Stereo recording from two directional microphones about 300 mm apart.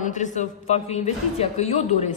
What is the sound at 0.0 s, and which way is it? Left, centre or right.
A man's voice, left.